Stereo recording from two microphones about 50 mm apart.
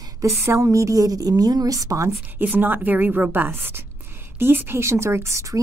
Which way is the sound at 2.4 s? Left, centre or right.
Right.